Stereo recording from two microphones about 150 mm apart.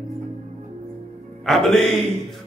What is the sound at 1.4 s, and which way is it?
Music, centre (ahead or behind).